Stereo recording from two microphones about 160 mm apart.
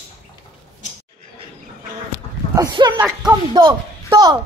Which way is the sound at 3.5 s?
30° right (ahead or behind).